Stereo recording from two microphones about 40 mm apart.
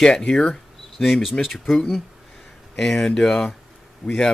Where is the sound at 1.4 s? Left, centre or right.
Centre.